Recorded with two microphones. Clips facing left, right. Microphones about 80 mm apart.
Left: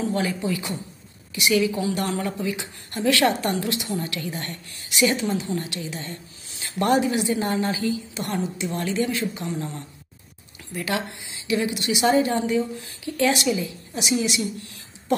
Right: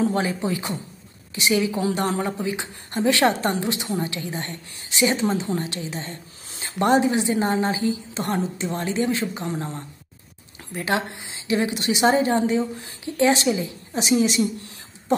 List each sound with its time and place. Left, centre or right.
0.0 s a woman's voice: right